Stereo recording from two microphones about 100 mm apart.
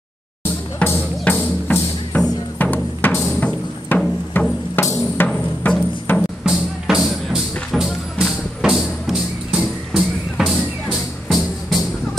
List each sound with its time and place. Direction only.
0.8 s music: 20° left (ahead or behind)
6.4 s music: 5° right (ahead or behind)